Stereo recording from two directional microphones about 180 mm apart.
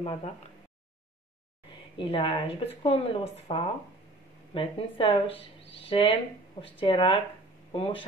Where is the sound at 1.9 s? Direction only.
30° left (ahead or behind).